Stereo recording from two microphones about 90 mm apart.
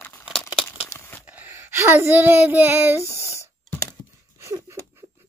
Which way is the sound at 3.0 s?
35° left (ahead or behind).